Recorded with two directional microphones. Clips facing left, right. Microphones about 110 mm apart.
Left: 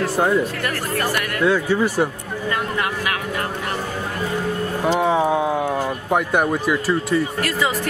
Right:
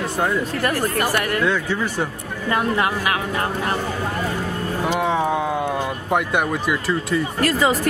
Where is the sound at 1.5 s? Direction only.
10° left (ahead or behind).